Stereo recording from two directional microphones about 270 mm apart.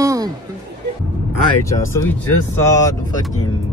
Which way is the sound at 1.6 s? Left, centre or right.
Centre.